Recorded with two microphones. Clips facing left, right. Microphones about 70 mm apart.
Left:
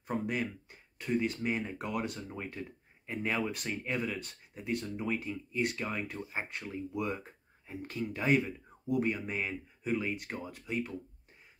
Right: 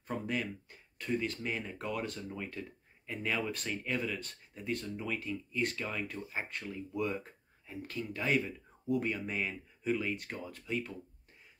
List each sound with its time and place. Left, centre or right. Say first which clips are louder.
0.0 s speech: left 2 dB; centre
2.1 s speech: even; left